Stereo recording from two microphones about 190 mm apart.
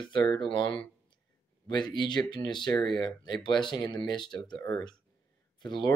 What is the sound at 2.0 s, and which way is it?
Speech, 25° left (ahead or behind).